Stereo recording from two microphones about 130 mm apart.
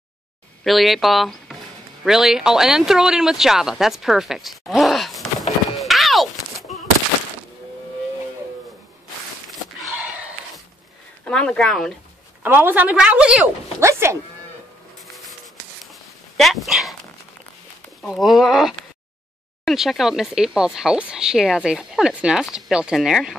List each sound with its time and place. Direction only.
0.7 s speech: centre (ahead or behind)
10.0 s a sound: 10° right (ahead or behind)
11.2 s speech: 5° left (ahead or behind)
12.4 s a woman's voice: 15° right (ahead or behind)
13.7 s sheep: 20° right (ahead or behind)
15.0 s dog: centre (ahead or behind)
18.0 s speech: centre (ahead or behind)